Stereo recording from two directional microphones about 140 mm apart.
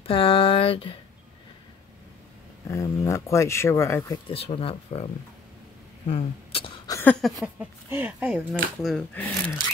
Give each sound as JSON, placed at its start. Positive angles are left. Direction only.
{"t": 0.0, "sound": "speech", "side_deg": 40}
{"t": 2.7, "sound": "speech", "side_deg": 20}
{"t": 4.3, "sound": "speech", "side_deg": 40}
{"t": 6.0, "sound": "speech", "side_deg": 45}
{"t": 6.9, "sound": "a sound", "side_deg": 15}
{"t": 7.2, "sound": "speech", "side_deg": 0}
{"t": 7.5, "sound": "speech", "side_deg": -15}
{"t": 8.9, "sound": "speech", "side_deg": 10}